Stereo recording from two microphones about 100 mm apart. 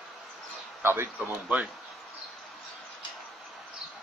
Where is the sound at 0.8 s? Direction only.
25° right (ahead or behind).